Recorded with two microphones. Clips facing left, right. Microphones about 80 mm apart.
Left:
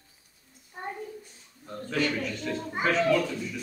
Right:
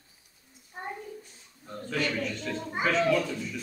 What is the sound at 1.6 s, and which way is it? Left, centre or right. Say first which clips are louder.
A man's voice: left 2 dB; centre.